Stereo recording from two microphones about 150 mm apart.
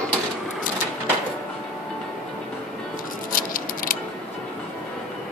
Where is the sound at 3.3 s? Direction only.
70° left (ahead or behind).